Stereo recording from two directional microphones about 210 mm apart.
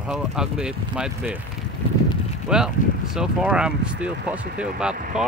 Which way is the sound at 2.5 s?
5° right (ahead or behind).